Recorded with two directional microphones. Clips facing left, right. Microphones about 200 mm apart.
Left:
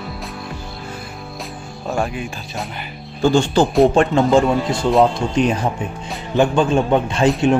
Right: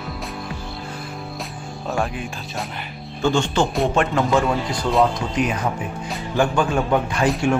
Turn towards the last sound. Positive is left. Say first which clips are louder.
# left 4 dB
turn(degrees=25)  # may be behind; listen again after turning